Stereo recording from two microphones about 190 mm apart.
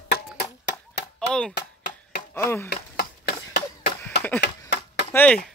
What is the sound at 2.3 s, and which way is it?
Speech, 15° left (ahead or behind).